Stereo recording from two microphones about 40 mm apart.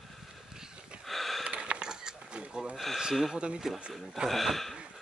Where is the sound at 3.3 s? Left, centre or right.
Right.